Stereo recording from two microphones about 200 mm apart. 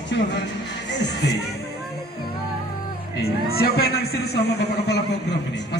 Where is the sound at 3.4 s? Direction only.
50° left (ahead or behind).